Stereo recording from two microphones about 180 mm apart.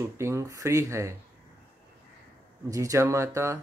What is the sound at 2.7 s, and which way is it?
Speech, 20° right (ahead or behind).